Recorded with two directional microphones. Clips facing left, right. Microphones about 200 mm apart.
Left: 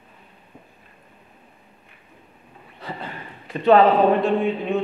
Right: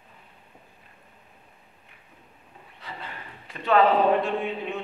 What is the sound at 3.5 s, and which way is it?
Speech, 30° left (ahead or behind).